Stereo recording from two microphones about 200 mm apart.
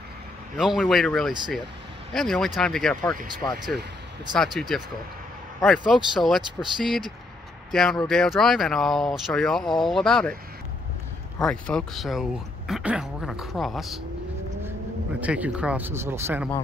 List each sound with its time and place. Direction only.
0.6 s speech: centre (ahead or behind)
3.4 s speech: 20° left (ahead or behind)
4.4 s speech: centre (ahead or behind)
11.4 s speech: 5° left (ahead or behind)
15.1 s speech: 5° right (ahead or behind)